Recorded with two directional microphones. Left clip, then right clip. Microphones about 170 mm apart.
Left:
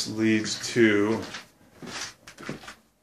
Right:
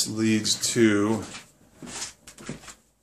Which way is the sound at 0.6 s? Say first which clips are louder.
Left 1 dB; 20° right (ahead or behind).